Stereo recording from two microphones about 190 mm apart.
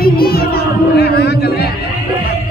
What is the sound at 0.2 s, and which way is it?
Music, 55° left (ahead or behind).